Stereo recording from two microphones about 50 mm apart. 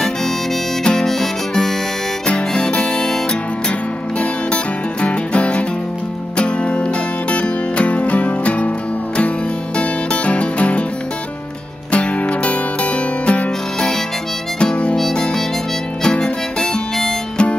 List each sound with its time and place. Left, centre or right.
0.8 s harmonica: centre
2.2 s music: centre
5.0 s music: left
11.9 s music: left
14.6 s harmonica: centre
15.0 s harmonica: centre
16.0 s harmonica: centre